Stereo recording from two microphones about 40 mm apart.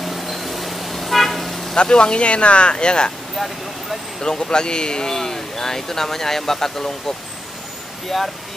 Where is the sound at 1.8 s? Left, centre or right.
Left.